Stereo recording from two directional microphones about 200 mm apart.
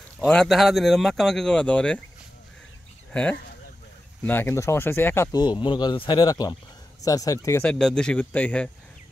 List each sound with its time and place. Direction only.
0.2 s speech: centre (ahead or behind)
3.1 s speech: 5° left (ahead or behind)